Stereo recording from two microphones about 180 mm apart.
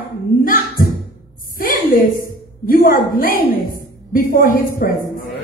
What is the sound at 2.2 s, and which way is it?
A woman's voice, 55° left (ahead or behind).